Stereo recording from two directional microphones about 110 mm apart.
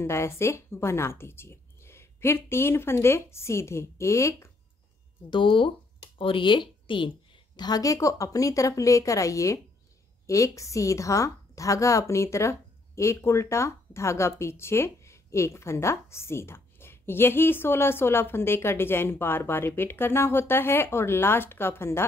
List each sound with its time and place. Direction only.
0.0 s a woman's voice: 25° left (ahead or behind)
5.3 s speech: 50° left (ahead or behind)
7.5 s a woman's voice: 35° left (ahead or behind); by 22.0 s 20° left (ahead or behind)